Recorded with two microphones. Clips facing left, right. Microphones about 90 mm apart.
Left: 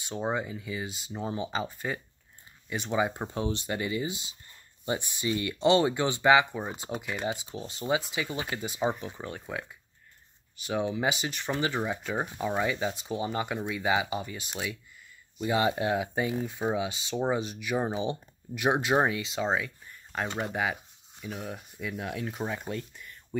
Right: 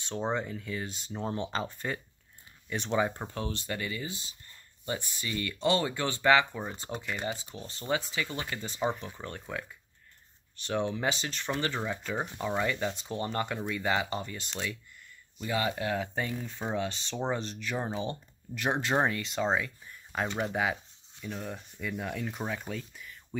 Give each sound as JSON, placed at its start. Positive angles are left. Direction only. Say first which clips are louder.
{"t": 0.0, "sound": "speech", "louder": "left 1 dB", "side_deg": 5}
{"t": 15.4, "sound": "speech", "louder": "left 4 dB", "side_deg": 25}